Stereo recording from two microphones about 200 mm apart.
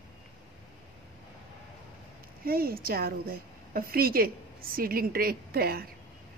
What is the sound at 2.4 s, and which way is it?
A woman's voice, 50° right (ahead or behind).